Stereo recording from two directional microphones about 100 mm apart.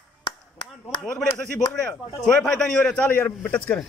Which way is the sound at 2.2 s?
5° left (ahead or behind).